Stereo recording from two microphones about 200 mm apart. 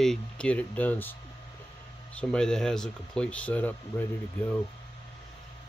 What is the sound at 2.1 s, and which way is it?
Speech, 5° left (ahead or behind).